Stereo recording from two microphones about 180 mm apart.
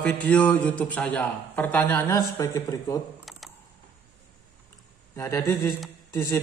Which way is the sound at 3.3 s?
Centre (ahead or behind).